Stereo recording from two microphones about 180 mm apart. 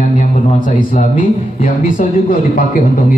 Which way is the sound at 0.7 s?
45° left (ahead or behind).